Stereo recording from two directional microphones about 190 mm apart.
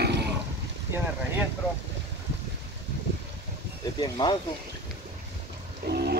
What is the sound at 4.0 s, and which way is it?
Speech, 25° left (ahead or behind).